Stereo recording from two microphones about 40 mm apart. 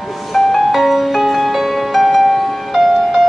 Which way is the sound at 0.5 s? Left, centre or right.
Centre.